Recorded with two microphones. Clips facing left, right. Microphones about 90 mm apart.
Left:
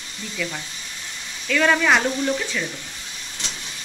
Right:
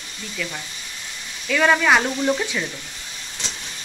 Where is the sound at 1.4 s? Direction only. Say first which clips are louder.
Right 1 dB; 5° right (ahead or behind).